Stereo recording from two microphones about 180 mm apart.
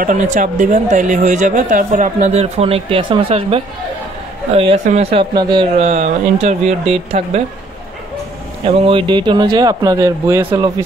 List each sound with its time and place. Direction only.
0.0 s a woman's voice: 45° right (ahead or behind); by 5.7 s 25° right (ahead or behind)
5.8 s a man's voice: 40° right (ahead or behind)
8.6 s speech: 30° right (ahead or behind)